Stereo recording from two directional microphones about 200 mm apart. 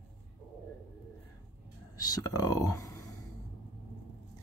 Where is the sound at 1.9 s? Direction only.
20° left (ahead or behind).